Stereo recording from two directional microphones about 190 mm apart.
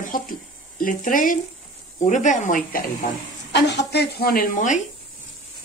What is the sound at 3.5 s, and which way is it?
Speech, 65° left (ahead or behind).